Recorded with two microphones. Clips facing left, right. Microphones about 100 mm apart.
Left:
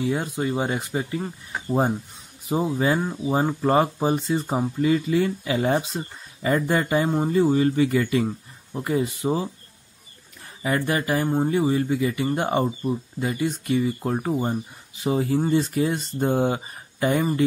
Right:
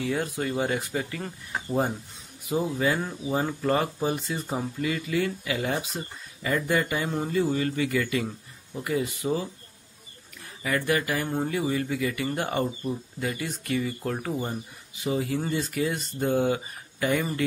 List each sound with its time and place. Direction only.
0.0 s speech: 25° left (ahead or behind)
2.4 s speech: 30° left (ahead or behind)
10.6 s speech: 30° left (ahead or behind)